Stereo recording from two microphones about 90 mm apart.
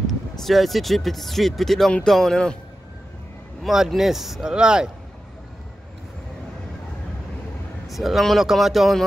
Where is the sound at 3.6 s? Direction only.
Centre (ahead or behind).